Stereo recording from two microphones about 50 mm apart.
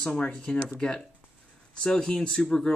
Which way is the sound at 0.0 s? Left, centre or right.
Left.